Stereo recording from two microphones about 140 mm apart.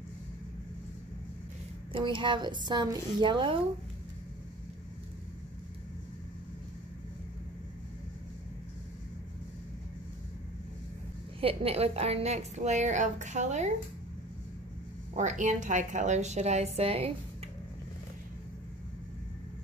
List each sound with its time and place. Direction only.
1.9 s a woman's voice: 35° right (ahead or behind)
11.4 s a woman's voice: 45° right (ahead or behind)
15.1 s a woman's voice: 60° right (ahead or behind); by 17.1 s 45° right (ahead or behind)